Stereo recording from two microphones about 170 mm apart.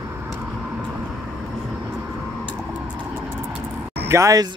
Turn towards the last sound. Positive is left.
turn(degrees=-20)  # may be behind; listen again after turning